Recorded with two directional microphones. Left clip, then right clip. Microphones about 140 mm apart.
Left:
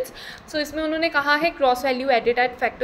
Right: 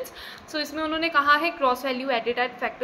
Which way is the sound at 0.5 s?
20° left (ahead or behind).